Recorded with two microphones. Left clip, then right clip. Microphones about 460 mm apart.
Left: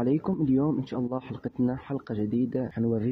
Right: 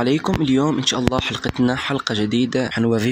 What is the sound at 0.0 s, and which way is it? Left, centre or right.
Speech, left.